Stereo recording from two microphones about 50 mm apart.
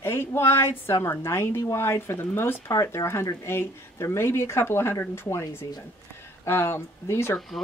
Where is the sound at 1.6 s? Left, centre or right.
Left.